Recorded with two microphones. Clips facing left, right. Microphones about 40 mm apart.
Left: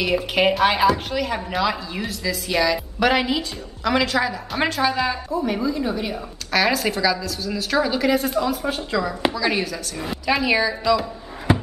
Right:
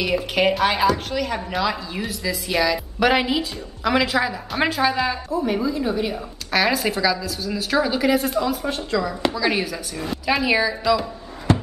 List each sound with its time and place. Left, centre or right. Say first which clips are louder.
0.0 s a woman's voice: left 1 dB; centre
11.5 s music: even; centre